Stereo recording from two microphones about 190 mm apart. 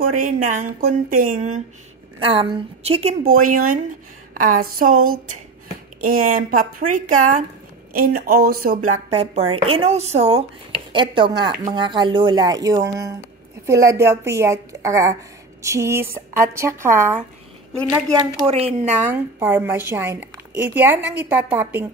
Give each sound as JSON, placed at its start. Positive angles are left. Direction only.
{"t": 0.1, "sound": "speech", "side_deg": -45}
{"t": 2.1, "sound": "speech", "side_deg": -30}
{"t": 3.3, "sound": "speech", "side_deg": -45}
{"t": 9.1, "sound": "a woman's voice", "side_deg": -35}
{"t": 18.4, "sound": "a woman's voice", "side_deg": -30}
{"t": 18.9, "sound": "speech", "side_deg": -10}